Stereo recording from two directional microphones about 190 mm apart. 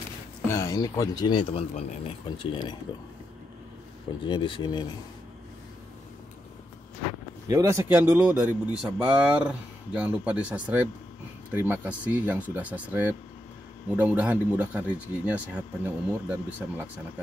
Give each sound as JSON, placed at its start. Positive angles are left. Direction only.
{"t": 0.5, "sound": "speech", "side_deg": 15}
{"t": 4.3, "sound": "speech", "side_deg": 25}
{"t": 7.4, "sound": "speech", "side_deg": -15}